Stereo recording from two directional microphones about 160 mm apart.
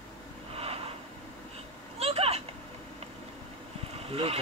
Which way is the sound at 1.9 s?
40° right (ahead or behind).